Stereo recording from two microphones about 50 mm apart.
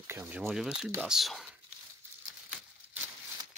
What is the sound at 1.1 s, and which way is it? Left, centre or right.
Speech, centre.